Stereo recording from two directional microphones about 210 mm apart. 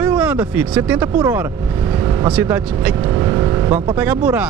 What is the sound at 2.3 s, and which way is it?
Speech, 5° right (ahead or behind).